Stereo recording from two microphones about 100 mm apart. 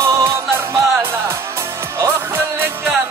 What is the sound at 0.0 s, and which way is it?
Music, 30° right (ahead or behind).